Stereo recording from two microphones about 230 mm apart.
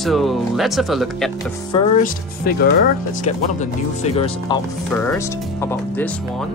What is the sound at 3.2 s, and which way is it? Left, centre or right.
Speech, left.